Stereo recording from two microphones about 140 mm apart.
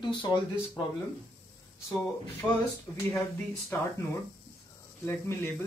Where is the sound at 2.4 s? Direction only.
5° left (ahead or behind).